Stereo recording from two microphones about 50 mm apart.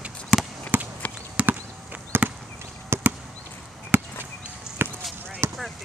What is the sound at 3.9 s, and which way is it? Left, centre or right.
Basketball bounce, right.